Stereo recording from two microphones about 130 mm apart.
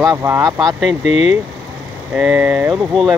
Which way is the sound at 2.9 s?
Centre (ahead or behind).